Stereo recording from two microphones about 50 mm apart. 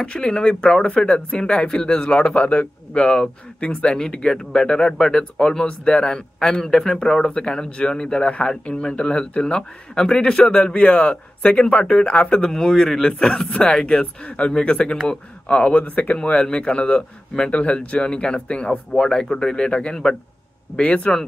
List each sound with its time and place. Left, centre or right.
0.0 s a man's voice: centre
10.7 s a man's voice: left
12.4 s a man's voice: centre; by 16.2 s left
16.2 s a man's voice: centre